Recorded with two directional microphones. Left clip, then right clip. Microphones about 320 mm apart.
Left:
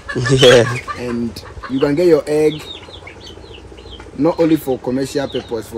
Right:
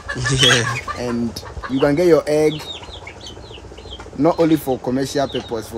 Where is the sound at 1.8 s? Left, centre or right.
Centre.